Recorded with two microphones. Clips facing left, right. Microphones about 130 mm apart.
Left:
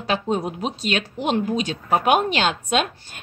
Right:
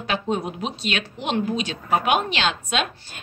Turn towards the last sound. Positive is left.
turn(degrees=45)  # may be behind; listen again after turning